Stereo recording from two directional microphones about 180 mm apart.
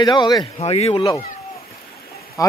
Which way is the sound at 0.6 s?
35° left (ahead or behind).